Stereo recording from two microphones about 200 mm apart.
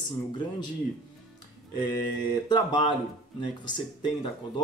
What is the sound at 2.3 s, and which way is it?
Speech, 20° left (ahead or behind).